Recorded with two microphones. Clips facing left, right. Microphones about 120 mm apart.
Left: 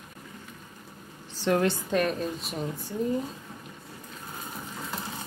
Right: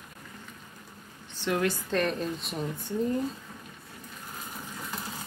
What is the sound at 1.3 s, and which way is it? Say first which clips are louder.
Speech: left 3 dB; 40° left (ahead or behind).